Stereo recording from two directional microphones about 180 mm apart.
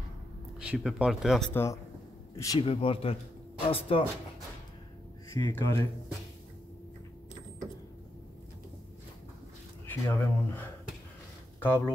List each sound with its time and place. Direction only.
0.7 s speech: 5° right (ahead or behind)
1.5 s speech: 15° left (ahead or behind)
2.6 s speech: 30° left (ahead or behind)
5.3 s speech: 15° left (ahead or behind)
9.8 s speech: 10° left (ahead or behind)
11.6 s speech: 15° left (ahead or behind)